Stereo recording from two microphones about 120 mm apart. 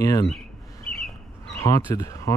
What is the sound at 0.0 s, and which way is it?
Speech, 30° left (ahead or behind).